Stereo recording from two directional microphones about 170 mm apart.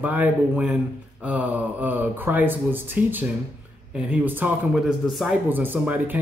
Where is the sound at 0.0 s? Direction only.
10° right (ahead or behind).